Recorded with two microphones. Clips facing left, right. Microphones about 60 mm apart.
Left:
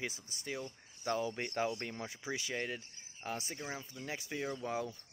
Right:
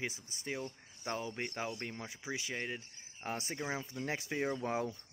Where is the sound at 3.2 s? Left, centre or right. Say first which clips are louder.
Right 1 dB; right.